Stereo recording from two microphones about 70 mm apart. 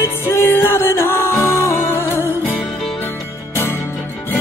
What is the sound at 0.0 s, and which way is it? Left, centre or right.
Music, left.